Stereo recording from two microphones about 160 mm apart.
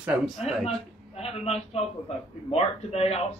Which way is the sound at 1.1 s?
40° left (ahead or behind).